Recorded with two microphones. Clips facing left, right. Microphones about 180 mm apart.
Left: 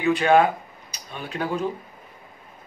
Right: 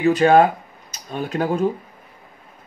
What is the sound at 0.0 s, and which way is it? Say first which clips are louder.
Speech: right 4 dB; 40° right (ahead or behind).